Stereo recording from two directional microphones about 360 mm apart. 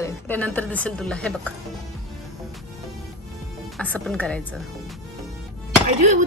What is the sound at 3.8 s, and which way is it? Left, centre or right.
Speech, centre.